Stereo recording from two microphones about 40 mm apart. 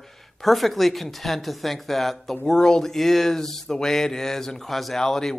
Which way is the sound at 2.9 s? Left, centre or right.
Centre.